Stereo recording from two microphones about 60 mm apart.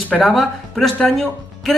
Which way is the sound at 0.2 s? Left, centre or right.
Centre.